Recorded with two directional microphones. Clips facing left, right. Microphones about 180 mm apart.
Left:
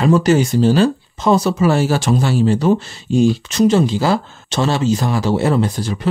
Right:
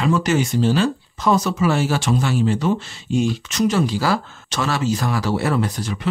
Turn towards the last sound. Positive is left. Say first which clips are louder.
# left 4 dB
turn(degrees=30)  # may be behind; listen again after turning